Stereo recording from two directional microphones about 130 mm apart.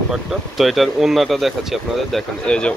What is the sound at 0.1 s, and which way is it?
Speech, centre (ahead or behind).